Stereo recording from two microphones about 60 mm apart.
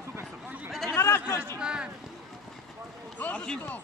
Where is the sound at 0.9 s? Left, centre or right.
Left.